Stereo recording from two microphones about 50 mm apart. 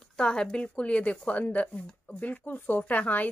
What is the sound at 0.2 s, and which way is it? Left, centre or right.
A woman's voice, centre.